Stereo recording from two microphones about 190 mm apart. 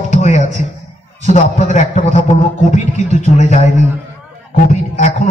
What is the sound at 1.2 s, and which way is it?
A man's voice, 35° left (ahead or behind).